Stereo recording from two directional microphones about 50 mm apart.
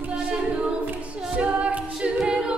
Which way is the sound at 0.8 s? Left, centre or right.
Right.